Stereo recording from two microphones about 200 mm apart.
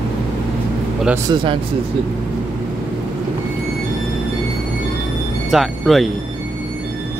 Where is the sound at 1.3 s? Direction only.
25° right (ahead or behind).